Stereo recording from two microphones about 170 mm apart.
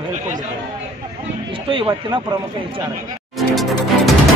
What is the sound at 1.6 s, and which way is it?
Speech, 30° right (ahead or behind).